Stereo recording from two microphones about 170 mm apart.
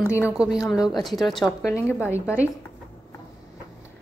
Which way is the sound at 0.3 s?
5° right (ahead or behind).